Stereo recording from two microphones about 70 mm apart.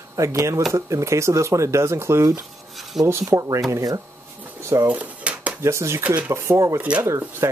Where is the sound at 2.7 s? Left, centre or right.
Centre.